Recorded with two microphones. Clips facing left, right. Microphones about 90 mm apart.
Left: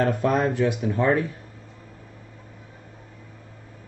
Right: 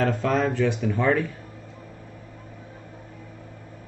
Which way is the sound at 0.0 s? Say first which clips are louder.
Left 1 dB; 15° left (ahead or behind).